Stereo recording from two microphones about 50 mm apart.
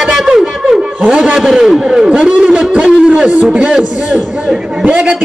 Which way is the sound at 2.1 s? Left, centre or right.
Centre.